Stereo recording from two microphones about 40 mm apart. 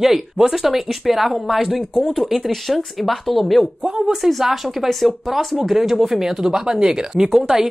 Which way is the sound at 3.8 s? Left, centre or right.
Centre.